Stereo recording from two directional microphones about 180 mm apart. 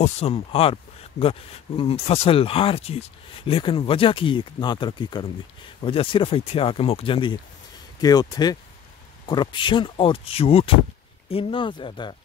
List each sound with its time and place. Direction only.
0.0 s speech: 35° left (ahead or behind)